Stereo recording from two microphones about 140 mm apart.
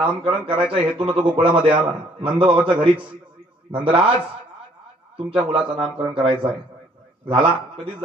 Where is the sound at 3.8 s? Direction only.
40° right (ahead or behind).